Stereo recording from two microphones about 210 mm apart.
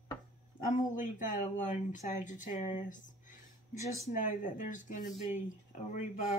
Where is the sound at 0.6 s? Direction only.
40° left (ahead or behind).